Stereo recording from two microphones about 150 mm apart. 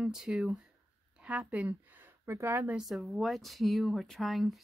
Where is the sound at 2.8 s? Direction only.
Centre (ahead or behind).